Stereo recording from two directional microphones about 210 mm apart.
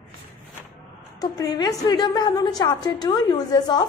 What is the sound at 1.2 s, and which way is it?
A woman's voice, 15° left (ahead or behind).